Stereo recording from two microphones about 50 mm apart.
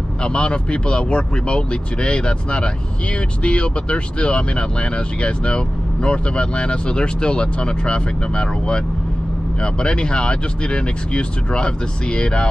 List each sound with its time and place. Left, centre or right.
0.2 s speech: centre